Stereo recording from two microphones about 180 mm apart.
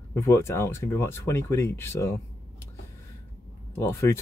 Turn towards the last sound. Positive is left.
turn(degrees=15)  # may be behind; listen again after turning